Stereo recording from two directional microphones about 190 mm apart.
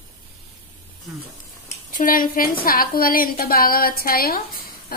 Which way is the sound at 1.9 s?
45° left (ahead or behind).